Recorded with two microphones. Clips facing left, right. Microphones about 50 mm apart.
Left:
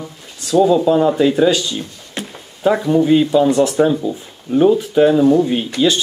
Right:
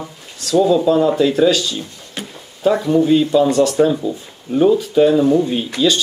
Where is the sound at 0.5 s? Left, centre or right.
Centre.